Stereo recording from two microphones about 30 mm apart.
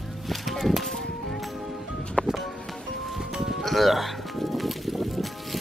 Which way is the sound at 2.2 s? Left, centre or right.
Left.